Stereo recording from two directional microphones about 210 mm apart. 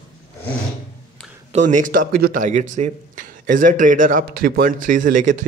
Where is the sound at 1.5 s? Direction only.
35° right (ahead or behind).